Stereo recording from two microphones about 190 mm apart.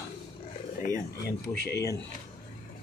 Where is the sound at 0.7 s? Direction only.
45° left (ahead or behind).